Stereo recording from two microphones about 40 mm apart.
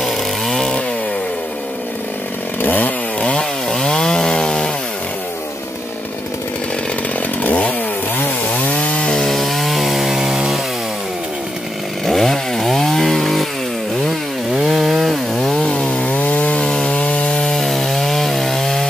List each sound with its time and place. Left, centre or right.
0.0 s chainsaw: centre
2.6 s chainsaw: left
3.2 s chainsaw: left
3.7 s chainsaw: centre
7.4 s chainsaw: left
9.1 s chainsaw: centre
12.1 s chainsaw: centre
14.5 s chainsaw: centre
15.5 s chainsaw: centre
16.1 s chainsaw: left
16.6 s wood: centre
17.0 s wood: left
17.6 s wood: centre